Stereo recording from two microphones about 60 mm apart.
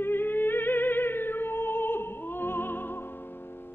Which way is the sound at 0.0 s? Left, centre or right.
Left.